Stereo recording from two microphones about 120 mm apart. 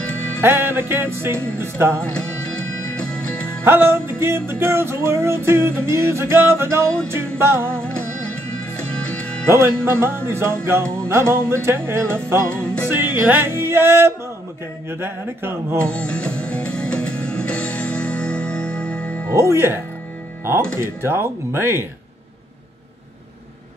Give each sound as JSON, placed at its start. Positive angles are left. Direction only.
{"t": 0.4, "sound": "music", "side_deg": -15}
{"t": 2.0, "sound": "music", "side_deg": 10}
{"t": 3.6, "sound": "music", "side_deg": -20}
{"t": 8.8, "sound": "music", "side_deg": 10}
{"t": 9.5, "sound": "music", "side_deg": -20}
{"t": 15.8, "sound": "music", "side_deg": 10}
{"t": 19.5, "sound": "music", "side_deg": -20}